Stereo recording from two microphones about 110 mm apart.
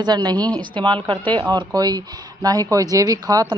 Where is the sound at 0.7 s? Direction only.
45° right (ahead or behind).